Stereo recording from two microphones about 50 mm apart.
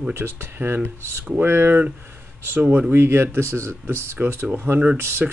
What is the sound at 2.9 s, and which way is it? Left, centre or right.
Speech, right.